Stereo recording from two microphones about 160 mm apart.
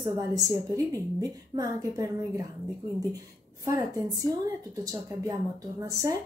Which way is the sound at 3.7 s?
20° right (ahead or behind).